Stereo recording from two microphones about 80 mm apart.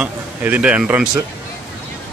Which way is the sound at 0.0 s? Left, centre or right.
Centre.